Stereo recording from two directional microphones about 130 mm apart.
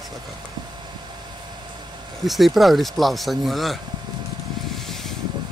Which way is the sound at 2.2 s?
Centre (ahead or behind).